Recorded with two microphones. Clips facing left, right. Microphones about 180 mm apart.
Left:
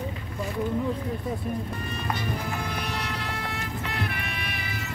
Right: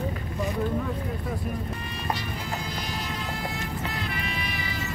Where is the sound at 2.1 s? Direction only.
60° left (ahead or behind).